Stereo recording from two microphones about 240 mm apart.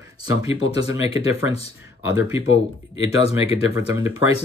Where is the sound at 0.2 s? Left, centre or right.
Centre.